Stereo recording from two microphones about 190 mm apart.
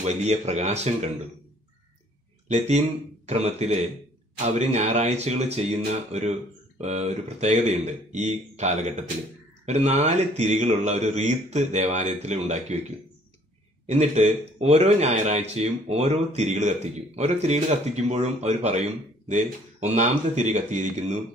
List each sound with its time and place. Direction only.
0.0 s a man's voice: 35° right (ahead or behind)
2.4 s a man's voice: 35° right (ahead or behind)
13.8 s a man's voice: 35° right (ahead or behind)